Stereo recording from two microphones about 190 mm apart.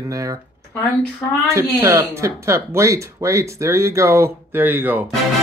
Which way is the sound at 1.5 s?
10° right (ahead or behind).